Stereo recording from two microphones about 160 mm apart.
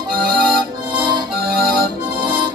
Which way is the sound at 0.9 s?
30° right (ahead or behind).